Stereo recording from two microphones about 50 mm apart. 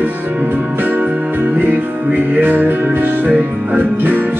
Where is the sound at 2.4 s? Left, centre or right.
Right.